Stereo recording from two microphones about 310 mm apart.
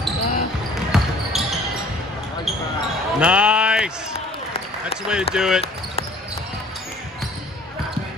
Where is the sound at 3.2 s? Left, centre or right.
Centre.